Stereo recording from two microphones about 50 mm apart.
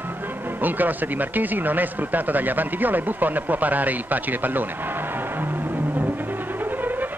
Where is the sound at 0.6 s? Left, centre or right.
Right.